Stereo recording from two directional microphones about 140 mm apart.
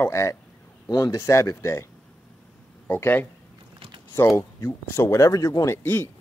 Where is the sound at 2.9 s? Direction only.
15° left (ahead or behind).